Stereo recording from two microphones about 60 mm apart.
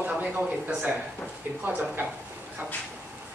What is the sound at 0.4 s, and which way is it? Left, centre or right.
Speech, centre.